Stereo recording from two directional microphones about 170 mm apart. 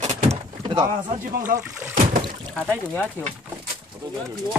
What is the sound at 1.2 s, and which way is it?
Speech, 50° right (ahead or behind).